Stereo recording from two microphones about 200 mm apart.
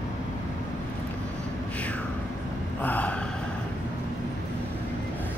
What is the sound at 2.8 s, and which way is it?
Speech, 10° left (ahead or behind).